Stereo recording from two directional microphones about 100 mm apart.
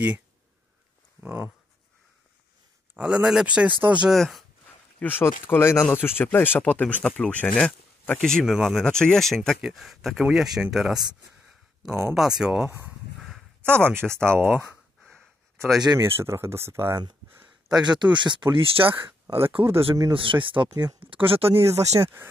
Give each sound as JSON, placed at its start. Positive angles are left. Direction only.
{"t": 1.2, "sound": "speech", "side_deg": -20}
{"t": 2.9, "sound": "speech", "side_deg": -10}
{"t": 4.1, "sound": "speech", "side_deg": 0}
{"t": 5.0, "sound": "speech", "side_deg": 20}
{"t": 12.1, "sound": "speech", "side_deg": -5}
{"t": 13.7, "sound": "speech", "side_deg": 10}
{"t": 14.1, "sound": "speech", "side_deg": -25}
{"t": 15.0, "sound": "a sound", "side_deg": 5}
{"t": 16.0, "sound": "speech", "side_deg": -25}
{"t": 17.6, "sound": "speech", "side_deg": -45}
{"t": 19.2, "sound": "speech", "side_deg": -25}
{"t": 19.5, "sound": "speech", "side_deg": -65}
{"t": 21.0, "sound": "speech", "side_deg": -65}
{"t": 22.0, "sound": "speech", "side_deg": -25}